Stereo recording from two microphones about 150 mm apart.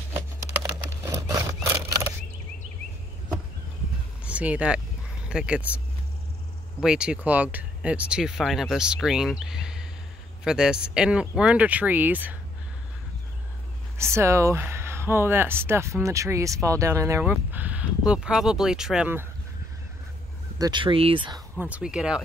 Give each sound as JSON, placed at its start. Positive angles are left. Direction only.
{"t": 1.1, "sound": "a sound", "side_deg": -20}
{"t": 4.2, "sound": "speech", "side_deg": -10}
{"t": 6.8, "sound": "speech", "side_deg": -5}
{"t": 13.9, "sound": "speech", "side_deg": -20}
{"t": 17.2, "sound": "speech", "side_deg": -10}
{"t": 20.5, "sound": "speech", "side_deg": -30}
{"t": 21.5, "sound": "speech", "side_deg": -10}